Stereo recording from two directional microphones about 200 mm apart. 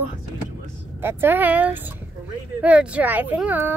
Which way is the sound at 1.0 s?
10° right (ahead or behind).